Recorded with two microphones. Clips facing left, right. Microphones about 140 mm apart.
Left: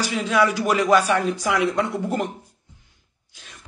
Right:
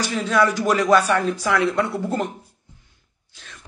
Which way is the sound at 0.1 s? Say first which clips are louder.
Right 1 dB; 15° left (ahead or behind).